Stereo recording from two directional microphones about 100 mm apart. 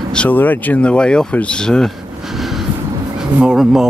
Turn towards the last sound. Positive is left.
turn(degrees=-5)  # may be behind; listen again after turning